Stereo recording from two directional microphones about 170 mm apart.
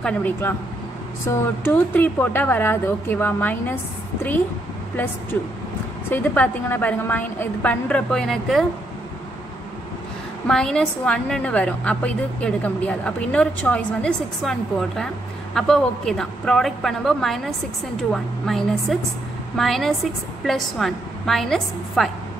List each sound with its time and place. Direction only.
0.0 s a woman's voice: 10° left (ahead or behind)
6.0 s a woman's voice: 10° left (ahead or behind)
10.4 s a woman's voice: 5° left (ahead or behind)